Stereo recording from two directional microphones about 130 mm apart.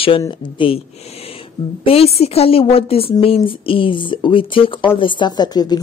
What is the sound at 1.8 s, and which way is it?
A woman's voice, 50° left (ahead or behind).